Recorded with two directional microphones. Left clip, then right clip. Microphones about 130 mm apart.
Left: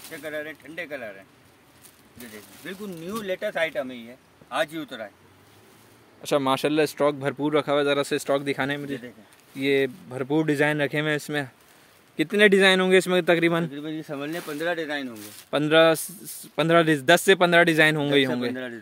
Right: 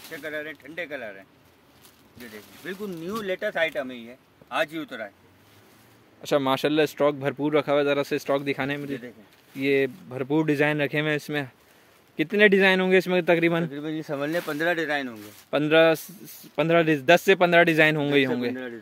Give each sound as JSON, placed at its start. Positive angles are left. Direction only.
{"t": 0.1, "sound": "speech", "side_deg": 0}
{"t": 2.3, "sound": "speech", "side_deg": -10}
{"t": 6.2, "sound": "speech", "side_deg": 0}
{"t": 13.7, "sound": "speech", "side_deg": -50}
{"t": 15.5, "sound": "speech", "side_deg": 5}